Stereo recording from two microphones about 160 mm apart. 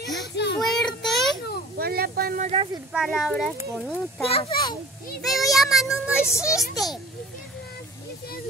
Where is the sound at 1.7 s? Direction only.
75° right (ahead or behind).